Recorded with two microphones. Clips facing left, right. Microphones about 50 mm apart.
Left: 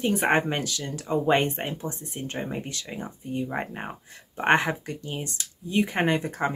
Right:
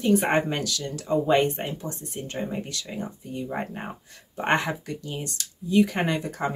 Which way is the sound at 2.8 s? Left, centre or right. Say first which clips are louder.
Even; centre.